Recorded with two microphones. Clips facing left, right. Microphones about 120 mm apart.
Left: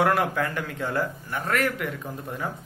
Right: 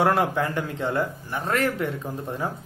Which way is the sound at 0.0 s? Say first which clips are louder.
Right 1 dB; 25° right (ahead or behind).